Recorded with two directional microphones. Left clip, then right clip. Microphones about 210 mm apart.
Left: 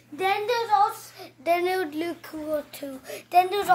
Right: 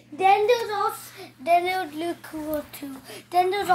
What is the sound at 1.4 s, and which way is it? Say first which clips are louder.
Speech: right 2 dB; 35° left (ahead or behind).